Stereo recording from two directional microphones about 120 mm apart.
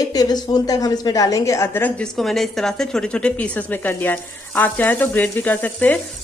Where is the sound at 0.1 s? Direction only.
30° left (ahead or behind).